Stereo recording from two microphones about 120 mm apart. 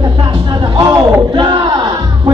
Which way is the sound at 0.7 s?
35° right (ahead or behind).